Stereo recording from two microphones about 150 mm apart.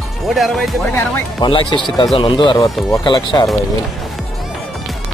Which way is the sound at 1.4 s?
35° left (ahead or behind).